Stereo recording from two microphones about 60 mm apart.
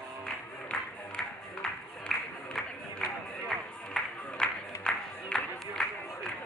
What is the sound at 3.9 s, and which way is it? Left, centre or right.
Music, centre.